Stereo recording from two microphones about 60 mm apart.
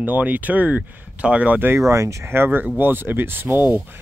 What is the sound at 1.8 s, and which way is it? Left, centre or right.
Speech, right.